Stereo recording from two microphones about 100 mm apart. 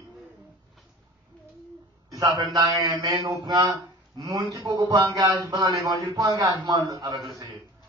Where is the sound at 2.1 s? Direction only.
40° right (ahead or behind).